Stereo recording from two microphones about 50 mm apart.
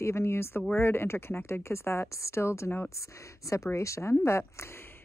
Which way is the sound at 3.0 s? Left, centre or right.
Left.